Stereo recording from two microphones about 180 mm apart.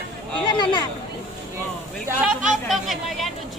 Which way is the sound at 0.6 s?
25° left (ahead or behind).